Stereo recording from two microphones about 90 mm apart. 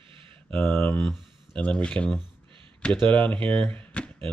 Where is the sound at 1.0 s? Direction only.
10° left (ahead or behind).